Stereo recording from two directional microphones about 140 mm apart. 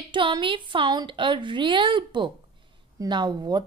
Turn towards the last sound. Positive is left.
turn(degrees=-30)  # may be behind; listen again after turning